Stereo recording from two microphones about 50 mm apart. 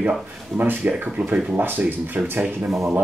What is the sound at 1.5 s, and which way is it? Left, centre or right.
Speech, right.